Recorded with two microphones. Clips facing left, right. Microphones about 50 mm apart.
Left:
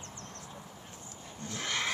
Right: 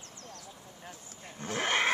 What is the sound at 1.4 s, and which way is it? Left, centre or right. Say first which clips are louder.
Roaring cats: right 6 dB; right.